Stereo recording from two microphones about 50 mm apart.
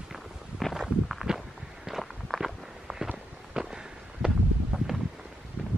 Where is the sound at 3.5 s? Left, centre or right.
Centre.